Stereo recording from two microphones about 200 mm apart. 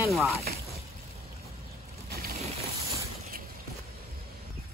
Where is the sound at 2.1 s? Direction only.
50° right (ahead or behind).